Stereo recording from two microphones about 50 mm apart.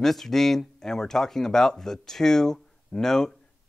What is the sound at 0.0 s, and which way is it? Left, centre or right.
Speech, centre.